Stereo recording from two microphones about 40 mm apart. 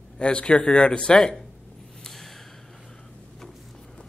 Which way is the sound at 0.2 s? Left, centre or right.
Left.